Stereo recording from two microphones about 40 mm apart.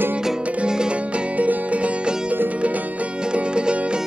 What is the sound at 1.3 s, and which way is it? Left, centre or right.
Music, right.